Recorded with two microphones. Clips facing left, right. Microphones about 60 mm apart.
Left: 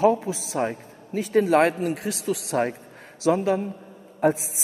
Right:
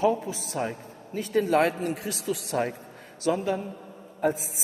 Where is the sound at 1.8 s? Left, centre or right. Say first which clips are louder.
Left 4 dB; left.